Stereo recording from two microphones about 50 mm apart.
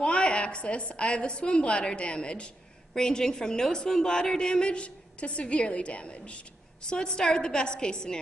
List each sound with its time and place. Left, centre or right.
0.0 s a woman's voice: left